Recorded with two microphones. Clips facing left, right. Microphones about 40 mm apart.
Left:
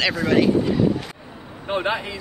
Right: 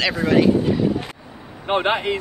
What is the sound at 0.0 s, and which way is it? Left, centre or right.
Speech, centre.